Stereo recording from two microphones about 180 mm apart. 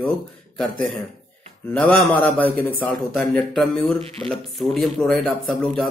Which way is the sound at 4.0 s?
35° right (ahead or behind).